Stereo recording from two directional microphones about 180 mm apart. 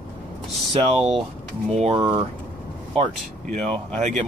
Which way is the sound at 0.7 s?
35° right (ahead or behind).